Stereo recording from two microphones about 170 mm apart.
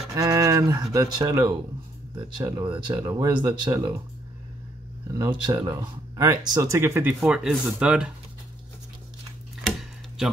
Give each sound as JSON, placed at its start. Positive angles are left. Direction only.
{"t": 0.1, "sound": "speech", "side_deg": -20}
{"t": 5.2, "sound": "speech", "side_deg": -25}
{"t": 9.6, "sound": "tick-tock", "side_deg": -5}